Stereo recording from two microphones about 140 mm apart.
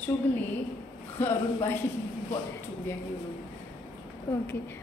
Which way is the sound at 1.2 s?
15° left (ahead or behind).